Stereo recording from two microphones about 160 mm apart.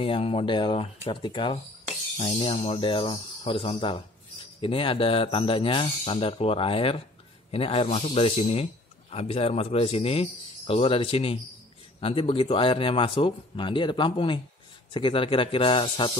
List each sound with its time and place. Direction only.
0.0 s speech: 35° left (ahead or behind)
2.1 s speech: 45° left (ahead or behind)
2.4 s speech: 35° left (ahead or behind)